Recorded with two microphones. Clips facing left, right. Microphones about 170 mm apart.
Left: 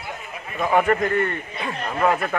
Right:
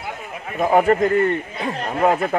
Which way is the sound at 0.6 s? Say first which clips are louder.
Right 4 dB; 35° right (ahead or behind).